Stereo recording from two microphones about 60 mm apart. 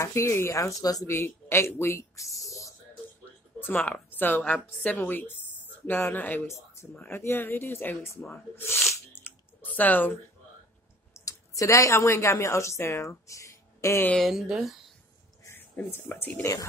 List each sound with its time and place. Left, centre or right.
0.0 s speech: left
0.6 s speech: left
1.0 s speech: left
1.8 s speech: left
3.8 s a woman's voice: left
6.4 s speech: left
7.1 s a woman's voice: left
8.0 s a woman's voice: left
9.1 s clicking: left
11.1 s speech: left
14.2 s speech: centre
15.5 s speech: left
16.3 s speech: left